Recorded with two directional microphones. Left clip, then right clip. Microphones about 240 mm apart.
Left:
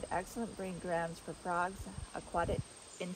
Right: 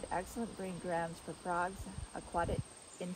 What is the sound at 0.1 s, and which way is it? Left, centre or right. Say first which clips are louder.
Speech: even; left.